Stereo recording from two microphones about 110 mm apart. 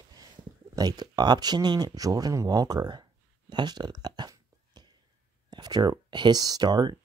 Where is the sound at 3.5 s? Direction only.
40° right (ahead or behind).